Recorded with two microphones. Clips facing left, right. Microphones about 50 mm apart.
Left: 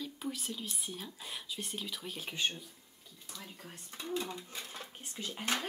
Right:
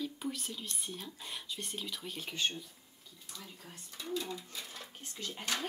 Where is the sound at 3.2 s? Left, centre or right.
Centre.